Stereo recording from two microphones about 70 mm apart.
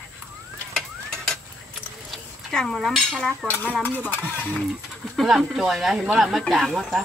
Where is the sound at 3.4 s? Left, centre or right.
Left.